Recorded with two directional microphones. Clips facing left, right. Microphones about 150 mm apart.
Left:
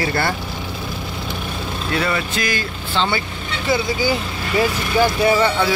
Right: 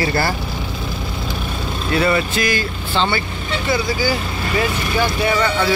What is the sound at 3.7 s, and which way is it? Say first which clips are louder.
Speech: left 1 dB; 25° left (ahead or behind).